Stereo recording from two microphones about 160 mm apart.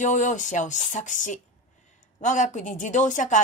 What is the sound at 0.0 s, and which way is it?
A woman's voice, 50° left (ahead or behind).